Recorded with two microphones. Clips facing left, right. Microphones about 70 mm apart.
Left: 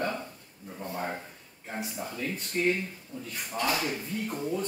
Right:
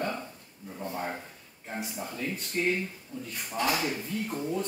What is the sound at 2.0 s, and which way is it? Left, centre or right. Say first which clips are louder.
Speech: even; centre.